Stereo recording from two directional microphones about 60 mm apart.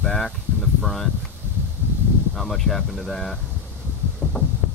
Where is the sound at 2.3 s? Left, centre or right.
Centre.